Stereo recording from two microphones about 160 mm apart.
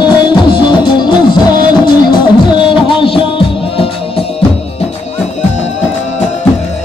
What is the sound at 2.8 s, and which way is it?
Music, 35° left (ahead or behind).